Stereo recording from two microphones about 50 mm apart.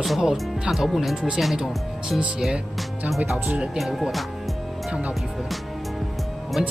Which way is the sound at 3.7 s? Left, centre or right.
Centre.